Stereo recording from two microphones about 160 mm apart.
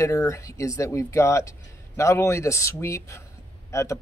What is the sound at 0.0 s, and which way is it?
Speech, 20° left (ahead or behind).